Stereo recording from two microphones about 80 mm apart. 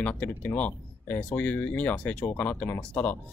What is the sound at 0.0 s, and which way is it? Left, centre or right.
Speech, centre.